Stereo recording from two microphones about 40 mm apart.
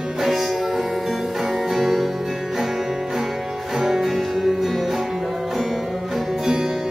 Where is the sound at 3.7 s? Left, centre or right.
Centre.